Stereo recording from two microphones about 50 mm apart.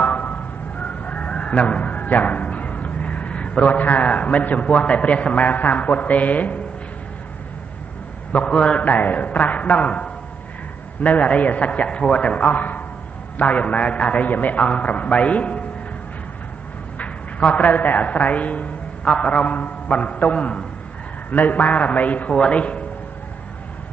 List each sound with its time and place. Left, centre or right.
0.0 s chicken: left
8.3 s a man's voice: left
17.0 s a man's voice: left